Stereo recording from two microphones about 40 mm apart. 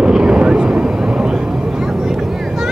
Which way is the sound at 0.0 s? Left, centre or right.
Centre.